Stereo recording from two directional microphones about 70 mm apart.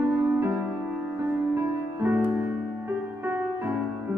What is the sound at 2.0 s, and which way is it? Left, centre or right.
Music, right.